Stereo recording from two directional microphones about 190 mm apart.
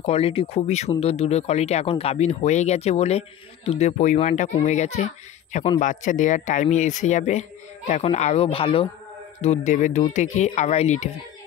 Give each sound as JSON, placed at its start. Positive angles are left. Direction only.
{"t": 0.0, "sound": "speech", "side_deg": 30}